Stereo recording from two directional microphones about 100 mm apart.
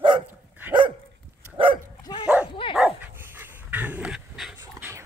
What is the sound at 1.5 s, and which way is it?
Dog, 60° right (ahead or behind).